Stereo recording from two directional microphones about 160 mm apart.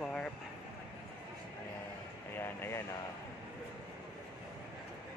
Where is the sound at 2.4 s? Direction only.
15° left (ahead or behind).